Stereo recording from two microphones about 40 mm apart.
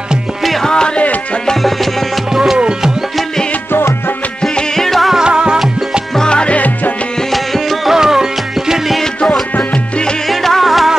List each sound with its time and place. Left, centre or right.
0.4 s music: centre
0.7 s music: centre
2.3 s music: centre
4.4 s music: centre
4.8 s music: centre
5.1 s music: centre
6.1 s music: left
6.5 s music: left
7.3 s music: centre
7.9 s music: centre
9.0 s music: centre
9.6 s music: left
10.2 s music: centre